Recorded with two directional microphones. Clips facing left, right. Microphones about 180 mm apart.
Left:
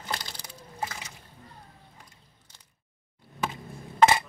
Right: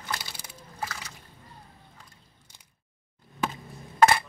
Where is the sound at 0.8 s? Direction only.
20° left (ahead or behind).